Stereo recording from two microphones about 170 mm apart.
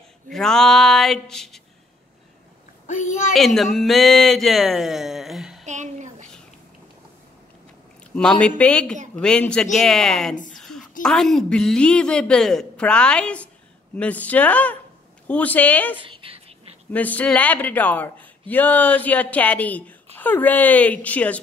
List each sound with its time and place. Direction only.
0.3 s a woman's voice: 5° left (ahead or behind)
2.9 s a woman's voice: 45° left (ahead or behind)
3.3 s a woman's voice: centre (ahead or behind)
5.7 s a sound: 45° right (ahead or behind)
8.1 s a woman's voice: 5° left (ahead or behind)
16.0 s a sound: 30° right (ahead or behind)
16.9 s speech: 10° left (ahead or behind)